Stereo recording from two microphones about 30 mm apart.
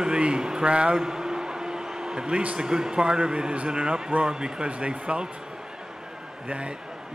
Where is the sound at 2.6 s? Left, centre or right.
Right.